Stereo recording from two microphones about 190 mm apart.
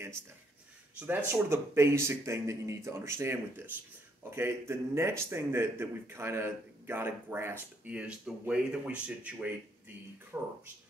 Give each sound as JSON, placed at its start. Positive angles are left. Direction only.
{"t": 0.9, "sound": "speech", "side_deg": -10}